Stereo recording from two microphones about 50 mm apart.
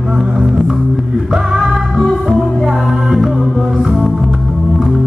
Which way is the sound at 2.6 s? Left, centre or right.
Centre.